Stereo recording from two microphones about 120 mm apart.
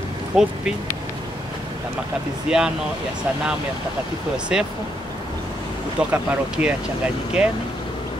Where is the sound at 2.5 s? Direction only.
5° right (ahead or behind).